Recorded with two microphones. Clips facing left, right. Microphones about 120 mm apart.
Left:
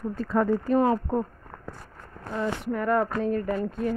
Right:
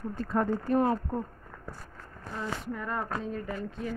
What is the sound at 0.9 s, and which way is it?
Speech, 90° left.